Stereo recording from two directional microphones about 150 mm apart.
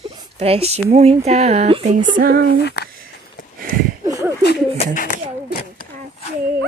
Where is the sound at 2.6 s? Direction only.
90° left.